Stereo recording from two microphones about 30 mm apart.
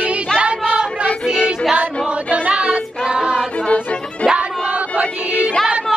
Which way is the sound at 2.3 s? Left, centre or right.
Right.